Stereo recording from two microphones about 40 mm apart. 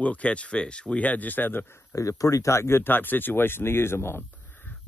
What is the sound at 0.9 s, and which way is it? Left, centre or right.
Speech, left.